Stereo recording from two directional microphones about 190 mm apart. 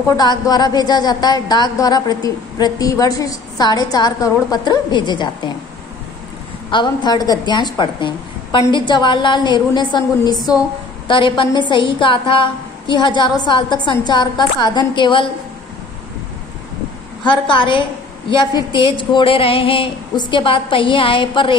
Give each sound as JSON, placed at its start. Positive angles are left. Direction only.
{"t": 0.2, "sound": "speech", "side_deg": 20}
{"t": 6.7, "sound": "speech", "side_deg": 25}
{"t": 17.2, "sound": "speech", "side_deg": 25}